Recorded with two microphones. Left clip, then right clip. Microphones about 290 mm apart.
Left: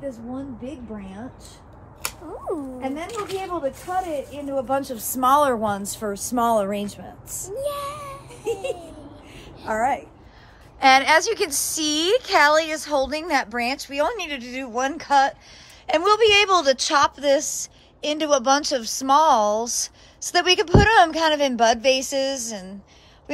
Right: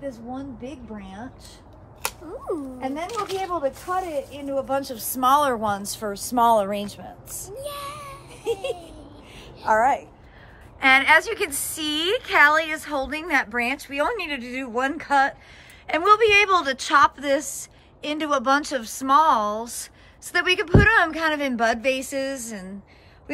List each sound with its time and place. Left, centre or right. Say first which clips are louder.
2.4 s speech: left 1 dB; centre
3.1 s speech: right 1 dB; right
4.3 s a woman's voice: left 1 dB; centre
7.5 s a sound: left 6 dB; centre
9.7 s speech: right 3 dB; centre
10.8 s a woman's voice: left 1 dB; centre